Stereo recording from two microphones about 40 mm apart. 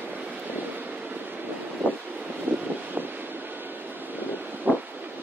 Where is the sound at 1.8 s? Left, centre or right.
Right.